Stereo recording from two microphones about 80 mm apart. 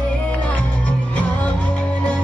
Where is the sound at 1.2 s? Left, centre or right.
Centre.